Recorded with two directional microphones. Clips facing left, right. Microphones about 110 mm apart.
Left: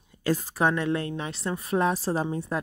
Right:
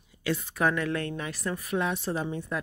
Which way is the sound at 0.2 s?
35° left (ahead or behind).